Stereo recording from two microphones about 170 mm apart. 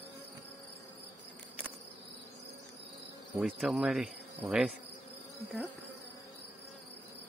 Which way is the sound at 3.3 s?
5° right (ahead or behind).